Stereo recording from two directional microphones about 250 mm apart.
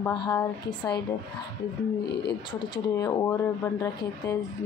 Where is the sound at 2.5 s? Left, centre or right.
Centre.